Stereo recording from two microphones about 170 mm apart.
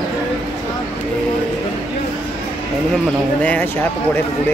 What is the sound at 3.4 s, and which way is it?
Speech, 10° left (ahead or behind).